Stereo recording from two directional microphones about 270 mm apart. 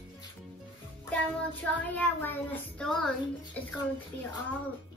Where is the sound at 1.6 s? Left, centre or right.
Centre.